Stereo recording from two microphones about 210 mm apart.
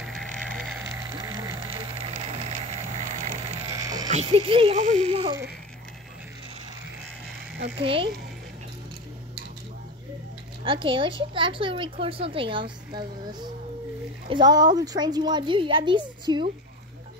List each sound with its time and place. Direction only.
0.0 s music: centre (ahead or behind)
0.7 s a sound: 20° right (ahead or behind)
3.7 s sheep: 15° right (ahead or behind)
4.1 s a woman's voice: 30° right (ahead or behind)
7.8 s a woman's voice: 25° right (ahead or behind)
10.6 s a woman's voice: 25° right (ahead or behind)